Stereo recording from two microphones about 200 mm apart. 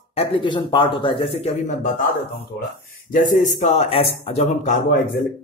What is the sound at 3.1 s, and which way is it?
Speech, 40° left (ahead or behind).